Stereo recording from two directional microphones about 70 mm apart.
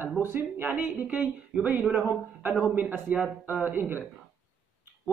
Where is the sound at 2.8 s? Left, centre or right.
Right.